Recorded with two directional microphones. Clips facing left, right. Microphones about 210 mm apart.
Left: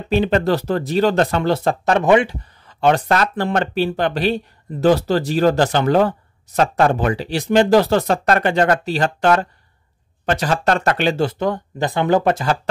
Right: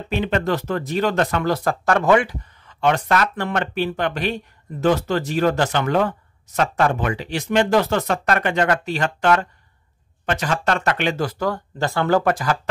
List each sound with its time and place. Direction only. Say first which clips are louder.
0.1 s speech: left 5 dB; 35° left (ahead or behind)
2.6 s speech: left 4 dB; 35° left (ahead or behind)